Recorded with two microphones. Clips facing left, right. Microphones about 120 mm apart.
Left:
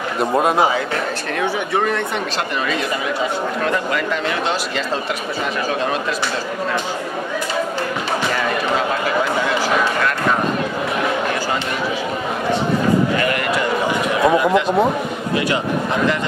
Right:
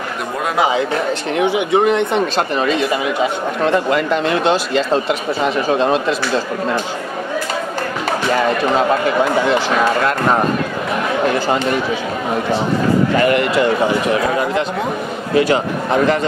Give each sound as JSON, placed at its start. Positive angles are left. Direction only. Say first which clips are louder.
{"t": 1.3, "sound": "speech", "louder": "right 5 dB", "side_deg": -15}
{"t": 3.6, "sound": "speech", "louder": "right 8 dB", "side_deg": -25}
{"t": 5.8, "sound": "speech", "louder": "right 5 dB", "side_deg": -30}
{"t": 13.2, "sound": "speech", "louder": "right 5 dB", "side_deg": -30}
{"t": 15.3, "sound": "a man's voice", "louder": "right 6 dB", "side_deg": -35}